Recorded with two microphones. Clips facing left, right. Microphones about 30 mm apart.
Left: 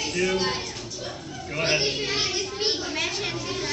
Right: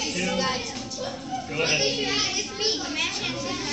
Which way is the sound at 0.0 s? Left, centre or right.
Left.